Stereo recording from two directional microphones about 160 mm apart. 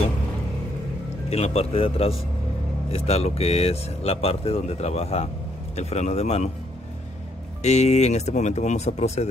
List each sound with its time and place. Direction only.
1.3 s speech: 40° left (ahead or behind)
7.6 s speech: 45° left (ahead or behind)